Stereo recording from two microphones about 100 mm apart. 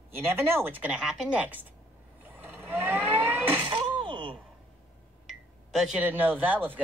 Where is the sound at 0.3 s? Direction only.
20° right (ahead or behind).